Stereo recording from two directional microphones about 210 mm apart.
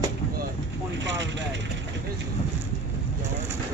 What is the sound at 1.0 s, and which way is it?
Speech, 55° right (ahead or behind).